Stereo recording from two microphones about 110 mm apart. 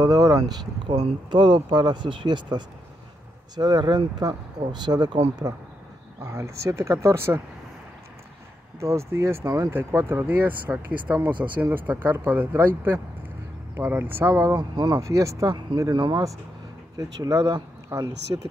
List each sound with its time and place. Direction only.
0.0 s speech: 35° right (ahead or behind)
0.8 s speech: 45° right (ahead or behind)
6.2 s speech: 25° right (ahead or behind)
8.7 s speech: 25° right (ahead or behind)
14.6 s speech: 40° right (ahead or behind)
15.0 s speech: 30° right (ahead or behind)
15.5 s speech: 40° right (ahead or behind)